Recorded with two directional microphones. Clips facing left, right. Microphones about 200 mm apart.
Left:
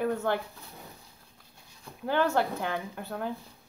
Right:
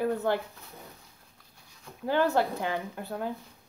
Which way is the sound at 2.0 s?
20° right (ahead or behind).